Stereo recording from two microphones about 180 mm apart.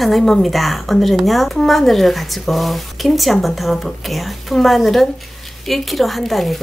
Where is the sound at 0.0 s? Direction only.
Centre (ahead or behind).